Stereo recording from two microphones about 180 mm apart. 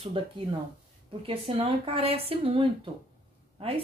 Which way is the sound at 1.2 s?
30° right (ahead or behind).